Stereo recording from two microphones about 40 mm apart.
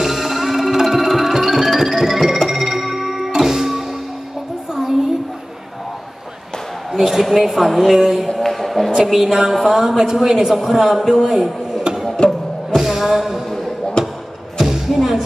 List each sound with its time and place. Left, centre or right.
0.0 s music: centre
6.9 s a woman's voice: centre
8.4 s a sound: centre
8.9 s a woman's voice: centre
12.7 s music: centre
14.0 s a sound: left
14.6 s music: centre